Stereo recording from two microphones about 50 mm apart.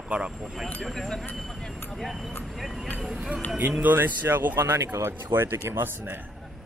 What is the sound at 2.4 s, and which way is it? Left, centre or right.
Vehicle, centre.